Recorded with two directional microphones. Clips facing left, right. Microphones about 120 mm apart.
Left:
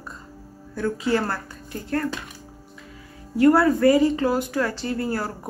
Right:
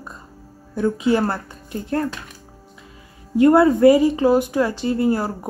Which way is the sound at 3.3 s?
20° right (ahead or behind).